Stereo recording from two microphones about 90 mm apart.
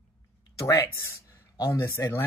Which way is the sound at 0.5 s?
35° left (ahead or behind).